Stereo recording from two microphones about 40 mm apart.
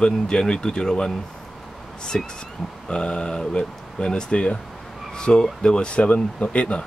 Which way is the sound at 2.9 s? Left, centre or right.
Left.